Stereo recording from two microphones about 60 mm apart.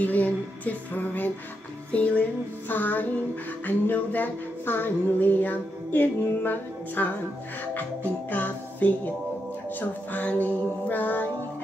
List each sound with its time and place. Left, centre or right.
0.0 s music: left
2.7 s female singing: left
7.7 s music: left